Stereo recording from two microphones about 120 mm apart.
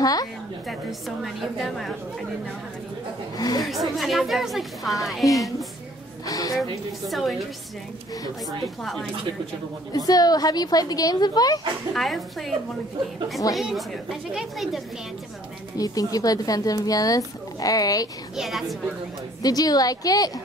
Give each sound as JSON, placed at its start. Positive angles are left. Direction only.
{"t": 0.0, "sound": "a woman's voice", "side_deg": 30}
{"t": 0.7, "sound": "a woman's voice", "side_deg": 0}
{"t": 3.3, "sound": "speech", "side_deg": 35}
{"t": 3.9, "sound": "a woman's voice", "side_deg": 0}
{"t": 5.2, "sound": "a woman's voice", "side_deg": 30}
{"t": 7.1, "sound": "a woman's voice", "side_deg": 0}
{"t": 8.8, "sound": "a woman's voice", "side_deg": 5}
{"t": 9.9, "sound": "speech", "side_deg": 30}
{"t": 11.9, "sound": "a woman's voice", "side_deg": 0}
{"t": 13.6, "sound": "a woman's voice", "side_deg": 0}
{"t": 15.8, "sound": "speech", "side_deg": 30}
{"t": 18.3, "sound": "a woman's voice", "side_deg": -5}
{"t": 19.4, "sound": "speech", "side_deg": 35}